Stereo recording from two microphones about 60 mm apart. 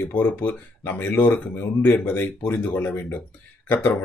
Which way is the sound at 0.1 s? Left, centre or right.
Left.